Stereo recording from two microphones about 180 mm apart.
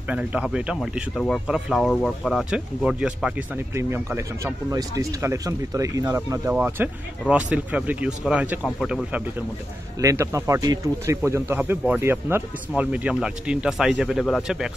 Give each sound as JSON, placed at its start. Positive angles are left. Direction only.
{"t": 0.1, "sound": "speech", "side_deg": -5}
{"t": 9.9, "sound": "speech", "side_deg": -15}